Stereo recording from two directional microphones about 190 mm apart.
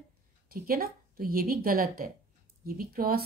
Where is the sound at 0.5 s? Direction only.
50° right (ahead or behind).